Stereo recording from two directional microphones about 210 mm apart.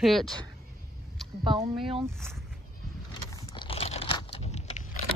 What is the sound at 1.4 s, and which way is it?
Speech, 25° right (ahead or behind).